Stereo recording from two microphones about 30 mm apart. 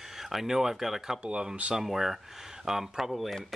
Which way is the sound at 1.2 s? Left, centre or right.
Right.